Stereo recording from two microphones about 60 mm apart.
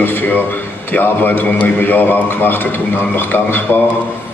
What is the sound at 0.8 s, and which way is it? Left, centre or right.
A man's voice, left.